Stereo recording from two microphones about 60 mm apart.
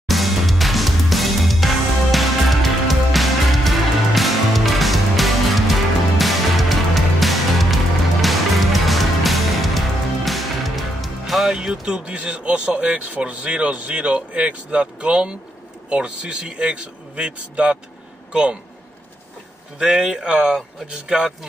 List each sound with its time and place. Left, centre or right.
0.1 s music: centre
15.9 s a man's voice: centre
19.8 s a man's voice: centre